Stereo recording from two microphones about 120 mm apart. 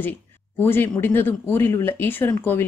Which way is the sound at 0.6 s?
20° left (ahead or behind).